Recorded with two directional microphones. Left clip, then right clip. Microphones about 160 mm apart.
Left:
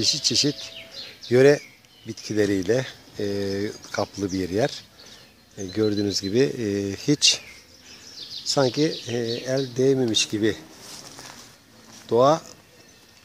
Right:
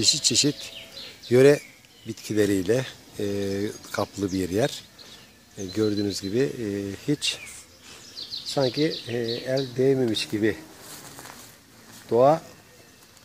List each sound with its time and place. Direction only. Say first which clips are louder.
0.0 s speech: even; centre (ahead or behind)
5.6 s speech: left 2 dB; 25° left (ahead or behind); by 7.4 s 65° left (ahead or behind)
8.5 s speech: left 2 dB; 40° left (ahead or behind); by 10.6 s 15° left (ahead or behind)
12.2 s speech: even; 15° left (ahead or behind)